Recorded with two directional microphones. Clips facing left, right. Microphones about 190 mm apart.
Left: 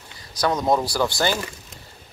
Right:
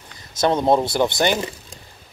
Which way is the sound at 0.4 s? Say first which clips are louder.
Right 3 dB; 25° right (ahead or behind).